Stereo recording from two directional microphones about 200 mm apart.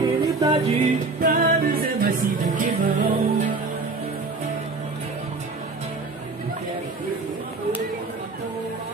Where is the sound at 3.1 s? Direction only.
25° right (ahead or behind).